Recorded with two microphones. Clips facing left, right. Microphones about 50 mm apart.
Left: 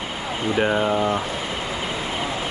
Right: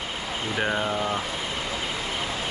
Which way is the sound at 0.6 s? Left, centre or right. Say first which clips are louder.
Left 6 dB; centre.